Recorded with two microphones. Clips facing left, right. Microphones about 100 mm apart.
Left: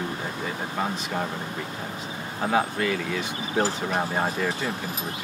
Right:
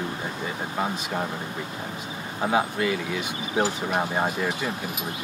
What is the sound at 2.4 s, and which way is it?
Speech, 15° right (ahead or behind).